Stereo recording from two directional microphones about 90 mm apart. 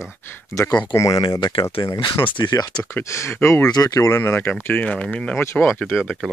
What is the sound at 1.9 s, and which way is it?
Speech, 50° left (ahead or behind).